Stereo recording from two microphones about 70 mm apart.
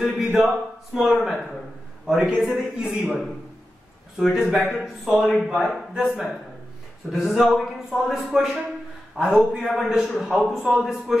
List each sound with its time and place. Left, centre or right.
0.0 s a man's voice: centre
4.3 s a man's voice: centre